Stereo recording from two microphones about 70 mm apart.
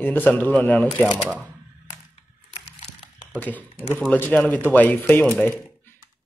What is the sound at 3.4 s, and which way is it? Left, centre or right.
Speech, left.